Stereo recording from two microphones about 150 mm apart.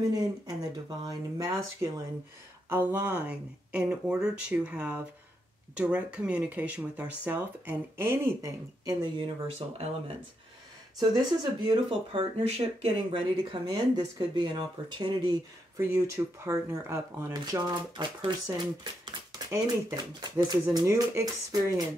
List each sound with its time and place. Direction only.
0.1 s speech: 25° right (ahead or behind)
11.0 s speech: 30° right (ahead or behind)
15.8 s speech: 20° right (ahead or behind)
17.3 s speech: 30° right (ahead or behind)